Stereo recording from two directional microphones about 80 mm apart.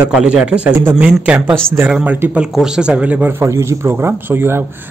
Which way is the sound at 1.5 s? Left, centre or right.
Right.